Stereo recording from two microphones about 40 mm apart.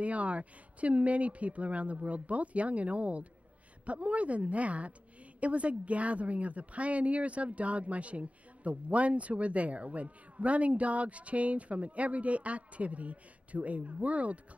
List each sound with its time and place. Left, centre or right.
0.0 s a woman's voice: right